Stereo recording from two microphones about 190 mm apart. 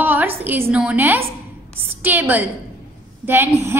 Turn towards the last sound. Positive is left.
turn(degrees=-15)  # may be behind; listen again after turning